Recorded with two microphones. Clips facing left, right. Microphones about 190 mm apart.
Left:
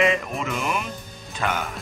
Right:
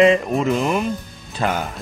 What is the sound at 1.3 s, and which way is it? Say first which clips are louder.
Speech: right 5 dB; 35° right (ahead or behind).